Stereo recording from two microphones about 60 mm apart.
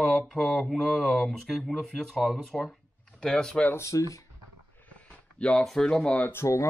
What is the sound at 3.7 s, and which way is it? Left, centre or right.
Speech, left.